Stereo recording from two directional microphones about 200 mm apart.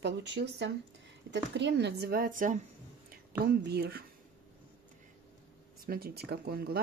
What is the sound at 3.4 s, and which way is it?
Speech, 50° right (ahead or behind).